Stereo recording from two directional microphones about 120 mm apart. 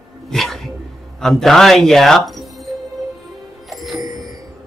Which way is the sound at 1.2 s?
5° left (ahead or behind).